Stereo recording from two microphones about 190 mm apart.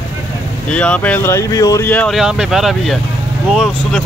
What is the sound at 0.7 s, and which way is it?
Speech, 5° left (ahead or behind).